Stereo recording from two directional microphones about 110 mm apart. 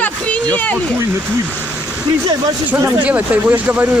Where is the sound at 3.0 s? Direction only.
15° right (ahead or behind).